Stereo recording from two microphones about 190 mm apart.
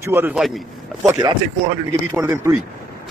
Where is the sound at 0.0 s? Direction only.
10° right (ahead or behind).